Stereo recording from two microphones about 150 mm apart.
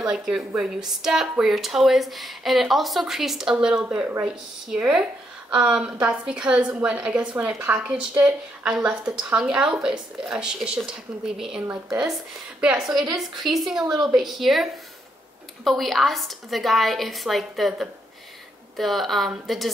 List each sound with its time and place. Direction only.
0.0 s a woman's voice: 5° right (ahead or behind)
11.6 s a woman's voice: 15° right (ahead or behind)
12.1 s speech: 5° right (ahead or behind)